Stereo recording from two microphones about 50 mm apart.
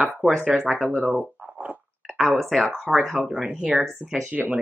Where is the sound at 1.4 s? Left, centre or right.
Right.